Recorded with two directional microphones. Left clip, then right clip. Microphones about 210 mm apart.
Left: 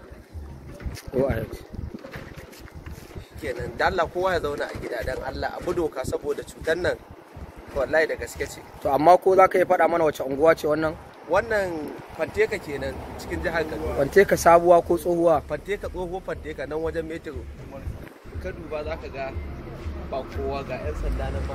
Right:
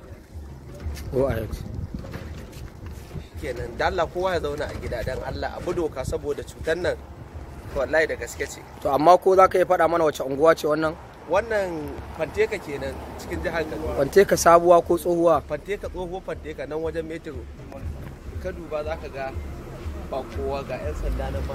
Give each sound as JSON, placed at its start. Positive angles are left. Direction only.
{"t": 1.1, "sound": "speech", "side_deg": -10}
{"t": 3.4, "sound": "speech", "side_deg": 5}
{"t": 8.8, "sound": "speech", "side_deg": -10}
{"t": 13.9, "sound": "speech", "side_deg": -10}
{"t": 18.4, "sound": "speech", "side_deg": -35}